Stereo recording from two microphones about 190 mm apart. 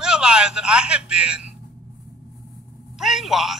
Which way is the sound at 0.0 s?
5° right (ahead or behind).